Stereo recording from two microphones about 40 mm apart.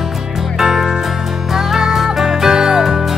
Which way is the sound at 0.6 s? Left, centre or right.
Centre.